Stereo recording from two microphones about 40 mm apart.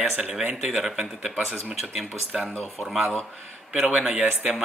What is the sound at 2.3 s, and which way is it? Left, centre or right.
Speech, centre.